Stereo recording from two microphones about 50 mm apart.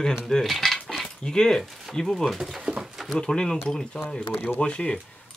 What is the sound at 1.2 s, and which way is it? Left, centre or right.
Speech, centre.